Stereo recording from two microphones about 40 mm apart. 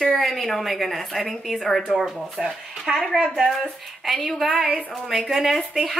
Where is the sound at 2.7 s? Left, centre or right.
Centre.